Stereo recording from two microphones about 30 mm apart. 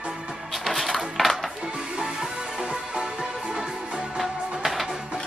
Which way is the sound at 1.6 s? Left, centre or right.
Right.